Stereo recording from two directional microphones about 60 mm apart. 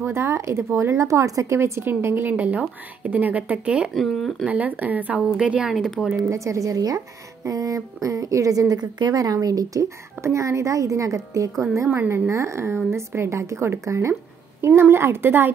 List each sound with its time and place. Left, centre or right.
0.0 s a woman's voice: right
1.6 s a woman's voice: right; by 3.9 s centre
3.9 s speech: centre
4.5 s speech: right
5.7 s speech: centre
6.1 s a woman's voice: right
7.4 s a woman's voice: right
10.2 s speech: right
11.7 s a woman's voice: right